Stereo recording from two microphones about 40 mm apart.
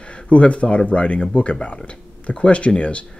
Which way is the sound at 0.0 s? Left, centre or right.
Left.